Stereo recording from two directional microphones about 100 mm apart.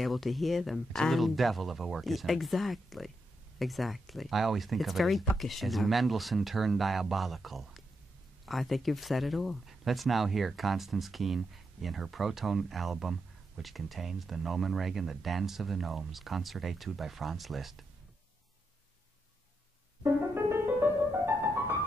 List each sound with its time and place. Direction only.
0.0 s speech: centre (ahead or behind)
20.0 s music: 25° right (ahead or behind)